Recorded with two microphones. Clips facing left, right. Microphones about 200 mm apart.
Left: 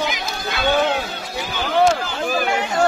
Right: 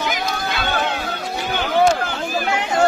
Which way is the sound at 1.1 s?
55° right (ahead or behind).